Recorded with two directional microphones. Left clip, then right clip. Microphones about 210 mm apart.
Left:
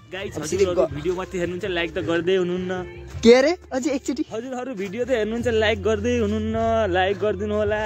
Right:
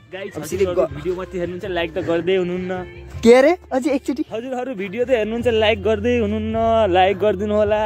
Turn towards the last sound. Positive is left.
turn(degrees=-15)  # may be behind; listen again after turning